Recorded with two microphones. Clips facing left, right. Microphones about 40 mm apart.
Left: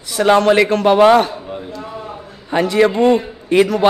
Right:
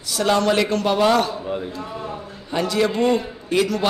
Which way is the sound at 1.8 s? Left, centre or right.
Centre.